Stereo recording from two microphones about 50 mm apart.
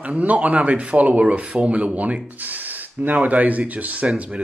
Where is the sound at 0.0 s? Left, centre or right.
Right.